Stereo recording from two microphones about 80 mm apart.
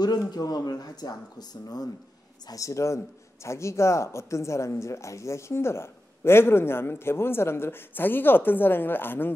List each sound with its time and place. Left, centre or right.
0.3 s speech: left